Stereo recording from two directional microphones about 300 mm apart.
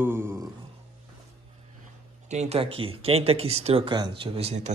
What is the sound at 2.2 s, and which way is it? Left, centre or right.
Speech, right.